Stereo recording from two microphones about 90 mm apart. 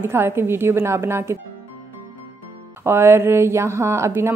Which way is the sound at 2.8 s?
30° right (ahead or behind).